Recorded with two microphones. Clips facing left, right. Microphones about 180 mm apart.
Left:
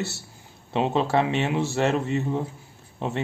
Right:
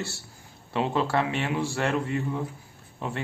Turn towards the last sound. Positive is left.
turn(degrees=25)  # may be behind; listen again after turning